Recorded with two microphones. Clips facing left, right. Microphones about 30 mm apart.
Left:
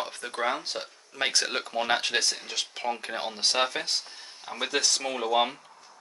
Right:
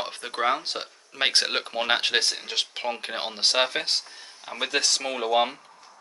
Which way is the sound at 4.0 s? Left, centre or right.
Centre.